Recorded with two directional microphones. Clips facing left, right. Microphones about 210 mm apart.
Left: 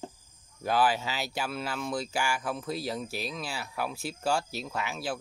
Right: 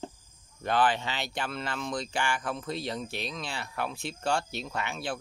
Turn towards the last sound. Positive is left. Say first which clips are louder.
# even
turn(degrees=5)  # may be behind; listen again after turning